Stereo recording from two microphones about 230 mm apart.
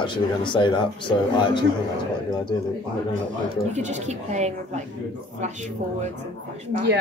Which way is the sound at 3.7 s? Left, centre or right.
Right.